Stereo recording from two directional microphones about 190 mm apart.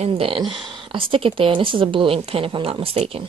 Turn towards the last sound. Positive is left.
turn(degrees=-30)  # may be behind; listen again after turning